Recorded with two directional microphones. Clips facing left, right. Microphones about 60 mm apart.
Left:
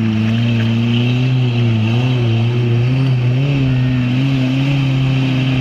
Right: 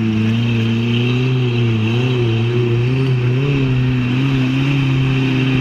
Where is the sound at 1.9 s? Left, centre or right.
Centre.